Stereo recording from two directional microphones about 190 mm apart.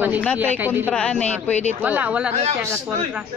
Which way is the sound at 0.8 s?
5° left (ahead or behind).